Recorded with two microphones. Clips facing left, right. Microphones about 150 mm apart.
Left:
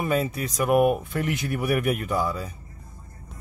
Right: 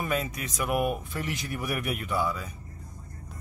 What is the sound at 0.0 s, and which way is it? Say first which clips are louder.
Speech: left 5 dB; 30° left (ahead or behind).